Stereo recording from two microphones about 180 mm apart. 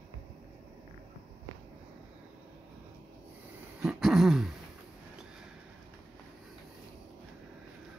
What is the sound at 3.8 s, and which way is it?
Throat clearing, 5° right (ahead or behind).